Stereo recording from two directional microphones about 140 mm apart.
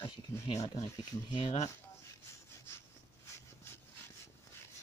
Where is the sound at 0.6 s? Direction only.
25° left (ahead or behind).